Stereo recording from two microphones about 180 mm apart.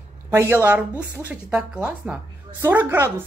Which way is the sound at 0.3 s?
15° right (ahead or behind).